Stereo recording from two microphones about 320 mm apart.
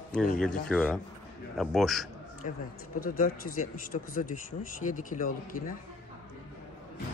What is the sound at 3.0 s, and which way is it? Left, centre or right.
Speech, left.